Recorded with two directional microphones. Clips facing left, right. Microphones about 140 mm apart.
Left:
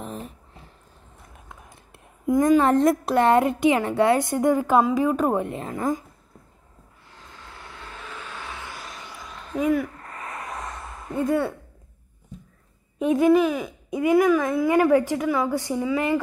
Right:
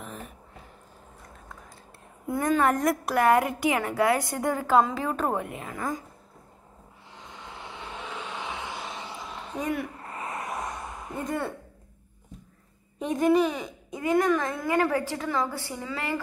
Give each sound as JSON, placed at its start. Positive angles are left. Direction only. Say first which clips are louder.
{"t": 2.2, "sound": "a woman's voice", "louder": "left 8 dB", "side_deg": 15}
{"t": 2.6, "sound": "a woman's voice", "louder": "left 5 dB", "side_deg": 25}
{"t": 5.4, "sound": "a woman's voice", "louder": "left 6 dB", "side_deg": 30}
{"t": 7.1, "sound": "vehicle", "louder": "right 2 dB", "side_deg": -20}
{"t": 9.6, "sound": "speech", "louder": "left 8 dB", "side_deg": 0}
{"t": 9.9, "sound": "a sound", "louder": "right 1 dB", "side_deg": -25}
{"t": 11.2, "sound": "speech", "louder": "left 8 dB", "side_deg": 0}
{"t": 13.0, "sound": "speech", "louder": "left 4 dB", "side_deg": 5}
{"t": 14.7, "sound": "a woman's voice", "louder": "left 6 dB", "side_deg": 15}